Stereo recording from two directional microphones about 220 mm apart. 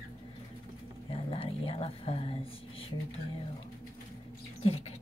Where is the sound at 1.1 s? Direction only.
25° left (ahead or behind).